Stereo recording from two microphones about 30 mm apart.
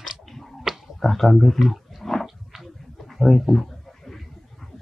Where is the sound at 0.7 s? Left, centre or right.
Centre.